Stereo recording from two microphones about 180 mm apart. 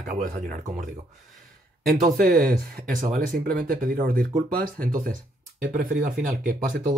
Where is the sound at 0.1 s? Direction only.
45° right (ahead or behind).